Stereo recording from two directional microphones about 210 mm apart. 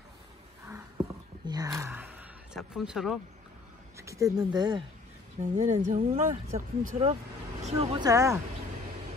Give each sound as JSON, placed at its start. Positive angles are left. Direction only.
{"t": 1.5, "sound": "speech", "side_deg": -15}
{"t": 3.9, "sound": "speech", "side_deg": -15}
{"t": 5.4, "sound": "speech", "side_deg": -35}